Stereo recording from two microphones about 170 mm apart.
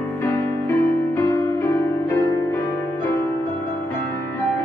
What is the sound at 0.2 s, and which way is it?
Music, 15° left (ahead or behind).